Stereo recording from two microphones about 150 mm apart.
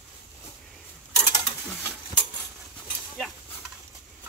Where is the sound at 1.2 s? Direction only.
40° left (ahead or behind).